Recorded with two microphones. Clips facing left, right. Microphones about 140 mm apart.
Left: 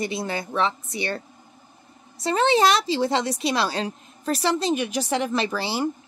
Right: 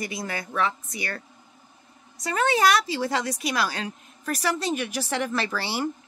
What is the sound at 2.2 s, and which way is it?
A woman's voice, 25° left (ahead or behind).